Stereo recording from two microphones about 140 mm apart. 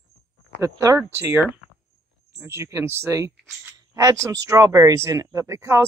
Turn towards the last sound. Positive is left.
turn(degrees=-20)  # may be behind; listen again after turning